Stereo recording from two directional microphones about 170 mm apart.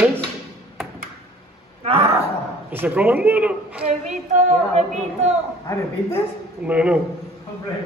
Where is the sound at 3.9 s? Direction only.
45° right (ahead or behind).